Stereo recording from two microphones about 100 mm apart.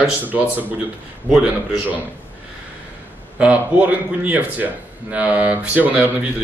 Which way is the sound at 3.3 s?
15° right (ahead or behind).